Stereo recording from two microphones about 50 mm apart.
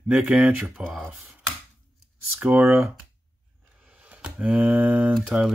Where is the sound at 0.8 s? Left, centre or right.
Centre.